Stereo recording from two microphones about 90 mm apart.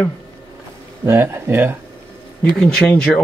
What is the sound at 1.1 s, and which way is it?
Speech, 25° right (ahead or behind).